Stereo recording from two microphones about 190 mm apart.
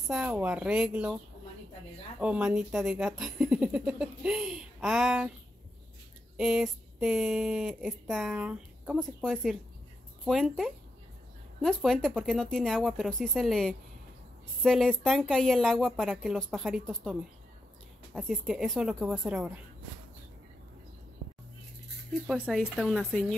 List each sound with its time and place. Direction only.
0.1 s speech: 5° right (ahead or behind)
2.1 s speech: 5° right (ahead or behind)
6.3 s speech: centre (ahead or behind)
22.3 s speech: centre (ahead or behind)